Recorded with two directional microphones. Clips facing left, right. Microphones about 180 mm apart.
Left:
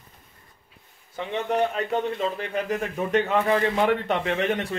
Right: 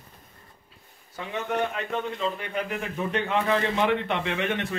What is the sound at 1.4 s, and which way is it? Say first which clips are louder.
Speech: left 4 dB; 35° left (ahead or behind).